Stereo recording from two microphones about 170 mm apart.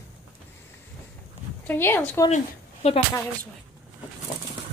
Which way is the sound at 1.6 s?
10° left (ahead or behind).